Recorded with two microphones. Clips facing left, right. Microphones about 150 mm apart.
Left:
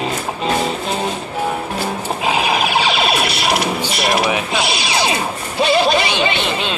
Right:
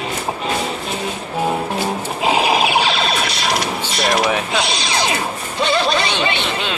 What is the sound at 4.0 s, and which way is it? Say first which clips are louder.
Mechanisms: right 1 dB; 5° left (ahead or behind).